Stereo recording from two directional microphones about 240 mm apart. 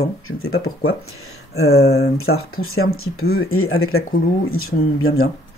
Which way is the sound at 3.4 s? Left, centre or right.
Left.